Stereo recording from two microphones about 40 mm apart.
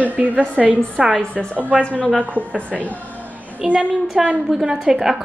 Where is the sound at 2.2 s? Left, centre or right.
Right.